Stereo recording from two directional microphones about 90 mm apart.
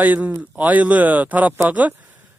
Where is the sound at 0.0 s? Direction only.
20° right (ahead or behind).